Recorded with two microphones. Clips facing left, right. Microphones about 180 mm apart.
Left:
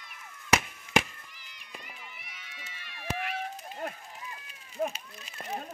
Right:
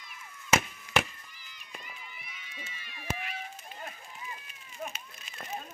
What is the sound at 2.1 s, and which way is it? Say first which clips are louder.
Run: right 2 dB; 75° left (ahead or behind).